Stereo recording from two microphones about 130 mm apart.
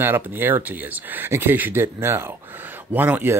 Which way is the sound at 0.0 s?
15° right (ahead or behind).